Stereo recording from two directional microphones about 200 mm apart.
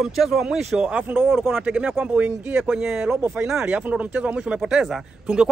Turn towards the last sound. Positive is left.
turn(degrees=-5)  # may be behind; listen again after turning